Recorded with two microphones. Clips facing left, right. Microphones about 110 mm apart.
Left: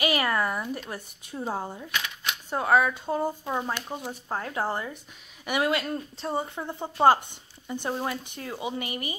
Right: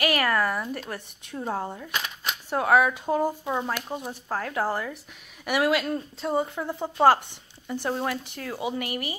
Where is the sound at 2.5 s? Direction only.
5° right (ahead or behind).